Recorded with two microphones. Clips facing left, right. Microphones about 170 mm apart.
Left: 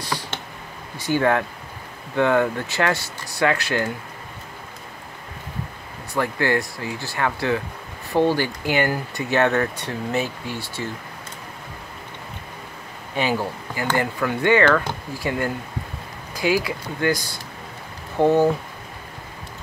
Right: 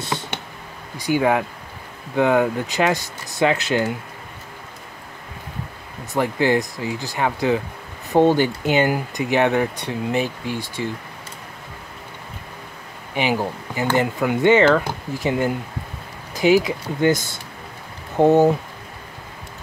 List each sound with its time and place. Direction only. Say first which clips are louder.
0.9 s speech: right 1 dB; 15° right (ahead or behind)
6.1 s speech: right 3 dB; 15° right (ahead or behind)
13.1 s speech: right 1 dB; 15° right (ahead or behind)